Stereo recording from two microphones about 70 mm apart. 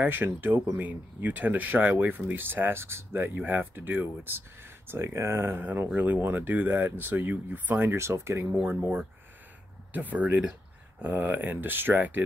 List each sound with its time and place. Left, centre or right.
0.0 s speech: right
6.2 s speech: right
8.6 s speech: right